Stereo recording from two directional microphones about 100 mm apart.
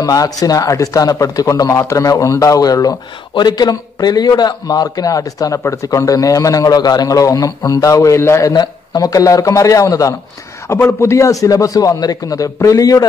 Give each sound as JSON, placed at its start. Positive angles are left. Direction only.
{"t": 0.0, "sound": "speech", "side_deg": 35}